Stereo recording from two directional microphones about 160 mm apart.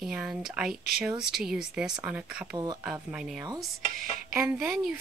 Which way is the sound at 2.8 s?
5° right (ahead or behind).